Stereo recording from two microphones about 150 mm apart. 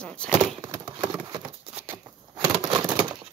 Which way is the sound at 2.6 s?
30° right (ahead or behind).